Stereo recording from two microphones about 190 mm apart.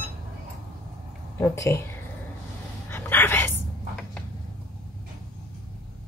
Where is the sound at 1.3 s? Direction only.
15° left (ahead or behind).